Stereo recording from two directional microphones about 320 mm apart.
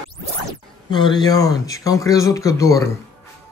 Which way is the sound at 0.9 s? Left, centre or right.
Centre.